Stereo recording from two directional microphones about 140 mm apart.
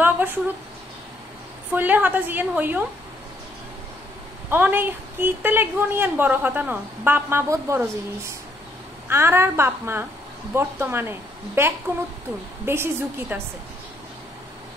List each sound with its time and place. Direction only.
0.0 s speech: 15° right (ahead or behind)
1.7 s a woman's voice: 10° right (ahead or behind)
4.5 s a woman's voice: 15° right (ahead or behind)
9.1 s a woman's voice: 15° right (ahead or behind)